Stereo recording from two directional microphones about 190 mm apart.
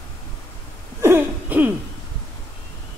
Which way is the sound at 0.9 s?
10° right (ahead or behind).